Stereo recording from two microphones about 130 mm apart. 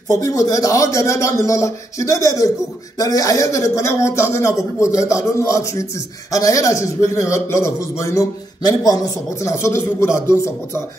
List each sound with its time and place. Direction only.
0.1 s a man's voice: 25° left (ahead or behind)